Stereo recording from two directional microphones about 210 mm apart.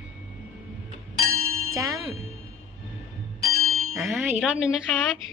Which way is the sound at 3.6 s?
80° right.